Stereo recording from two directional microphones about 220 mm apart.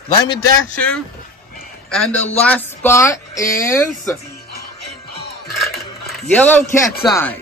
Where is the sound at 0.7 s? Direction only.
5° left (ahead or behind).